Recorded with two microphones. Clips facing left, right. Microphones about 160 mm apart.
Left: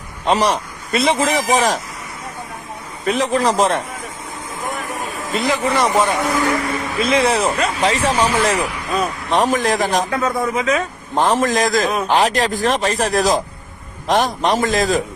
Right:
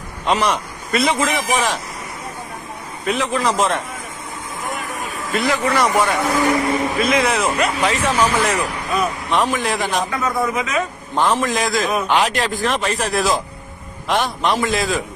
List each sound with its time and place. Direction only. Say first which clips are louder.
0.2 s speech: left 2 dB; 35° left (ahead or behind)
3.1 s speech: left 3 dB; 35° left (ahead or behind)
5.1 s a man's voice: even; 20° left (ahead or behind); by 15.0 s 40° left (ahead or behind)